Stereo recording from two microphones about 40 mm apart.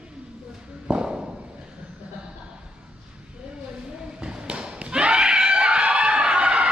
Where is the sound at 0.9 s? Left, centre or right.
Right.